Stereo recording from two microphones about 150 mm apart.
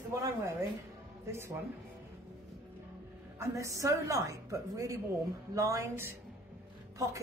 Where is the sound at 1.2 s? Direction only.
15° right (ahead or behind).